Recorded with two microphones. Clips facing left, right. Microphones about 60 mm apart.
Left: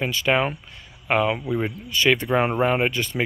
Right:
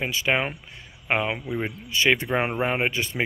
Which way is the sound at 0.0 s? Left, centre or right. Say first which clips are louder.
Left 3 dB; centre.